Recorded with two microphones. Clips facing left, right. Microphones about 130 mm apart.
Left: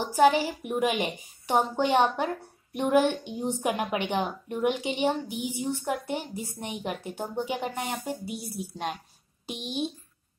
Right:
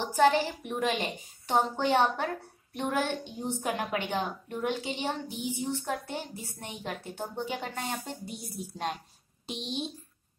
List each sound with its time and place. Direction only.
0.0 s a woman's voice: 10° left (ahead or behind)